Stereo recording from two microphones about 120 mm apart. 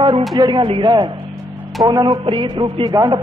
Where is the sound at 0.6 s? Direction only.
45° right (ahead or behind).